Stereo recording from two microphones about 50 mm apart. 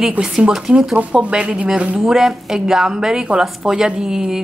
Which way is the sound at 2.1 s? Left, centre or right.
Centre.